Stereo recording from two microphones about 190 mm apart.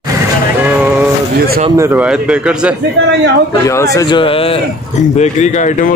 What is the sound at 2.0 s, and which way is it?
Speech, 5° right (ahead or behind).